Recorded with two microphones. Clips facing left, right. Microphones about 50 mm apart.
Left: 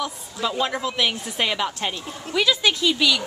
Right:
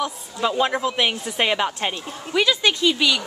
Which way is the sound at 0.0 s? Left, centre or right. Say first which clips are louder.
Right 3 dB; centre.